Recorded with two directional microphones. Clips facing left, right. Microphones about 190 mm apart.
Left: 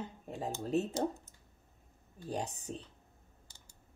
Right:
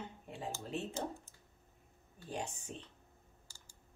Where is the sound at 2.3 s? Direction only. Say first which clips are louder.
Left 4 dB; 40° left (ahead or behind).